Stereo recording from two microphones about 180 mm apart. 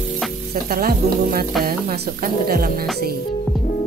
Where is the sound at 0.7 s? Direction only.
55° right (ahead or behind).